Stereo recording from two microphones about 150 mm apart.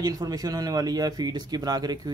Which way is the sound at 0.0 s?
25° right (ahead or behind).